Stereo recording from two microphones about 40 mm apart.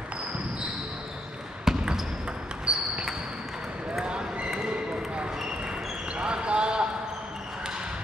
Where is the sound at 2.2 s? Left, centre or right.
Right.